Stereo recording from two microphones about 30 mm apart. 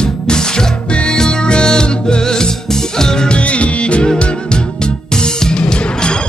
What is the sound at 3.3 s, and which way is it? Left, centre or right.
Music, left.